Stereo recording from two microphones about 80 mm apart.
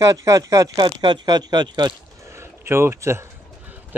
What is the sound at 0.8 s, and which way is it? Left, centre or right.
Speech, right.